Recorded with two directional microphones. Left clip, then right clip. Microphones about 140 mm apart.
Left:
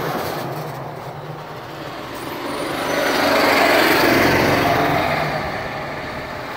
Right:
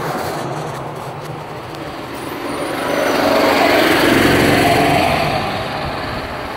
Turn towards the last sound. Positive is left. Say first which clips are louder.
# right 4 dB
turn(degrees=-20)  # may be behind; listen again after turning